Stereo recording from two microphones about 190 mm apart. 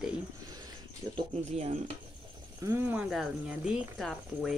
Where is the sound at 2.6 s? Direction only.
10° right (ahead or behind).